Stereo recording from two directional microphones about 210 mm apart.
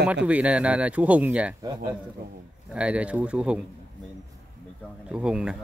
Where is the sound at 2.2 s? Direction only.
45° right (ahead or behind).